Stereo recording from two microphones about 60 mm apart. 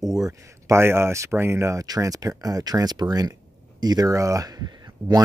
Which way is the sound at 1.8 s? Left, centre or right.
Right.